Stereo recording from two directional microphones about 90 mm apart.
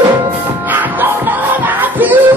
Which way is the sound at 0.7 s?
20° right (ahead or behind).